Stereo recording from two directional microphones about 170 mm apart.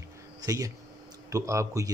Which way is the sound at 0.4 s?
20° right (ahead or behind).